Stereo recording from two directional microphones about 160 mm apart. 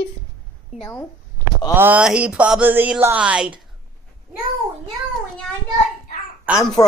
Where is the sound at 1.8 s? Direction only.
10° right (ahead or behind).